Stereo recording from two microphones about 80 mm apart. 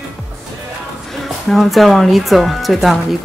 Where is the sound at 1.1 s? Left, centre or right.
Centre.